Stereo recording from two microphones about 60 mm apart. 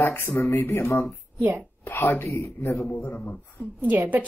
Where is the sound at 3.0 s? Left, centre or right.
Left.